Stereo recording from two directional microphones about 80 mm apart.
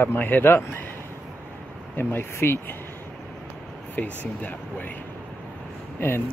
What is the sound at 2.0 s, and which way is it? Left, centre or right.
Speech, left.